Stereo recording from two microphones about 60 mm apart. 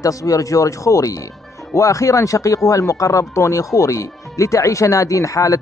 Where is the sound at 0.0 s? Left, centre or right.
Left.